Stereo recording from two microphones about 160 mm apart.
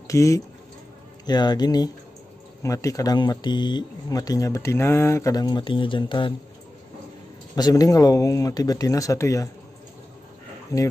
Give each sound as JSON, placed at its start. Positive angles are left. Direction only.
{"t": 0.1, "sound": "speech", "side_deg": 20}
{"t": 7.5, "sound": "speech", "side_deg": 25}
{"t": 10.7, "sound": "speech", "side_deg": 20}